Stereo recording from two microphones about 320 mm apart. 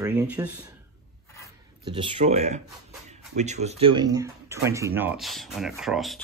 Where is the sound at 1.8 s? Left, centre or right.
Centre.